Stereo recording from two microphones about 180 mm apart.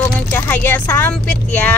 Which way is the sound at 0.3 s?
10° left (ahead or behind).